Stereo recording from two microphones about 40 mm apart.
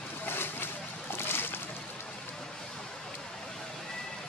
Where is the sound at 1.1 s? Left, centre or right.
Left.